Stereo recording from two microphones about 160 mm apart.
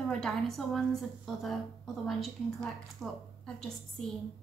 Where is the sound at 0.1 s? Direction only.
5° left (ahead or behind).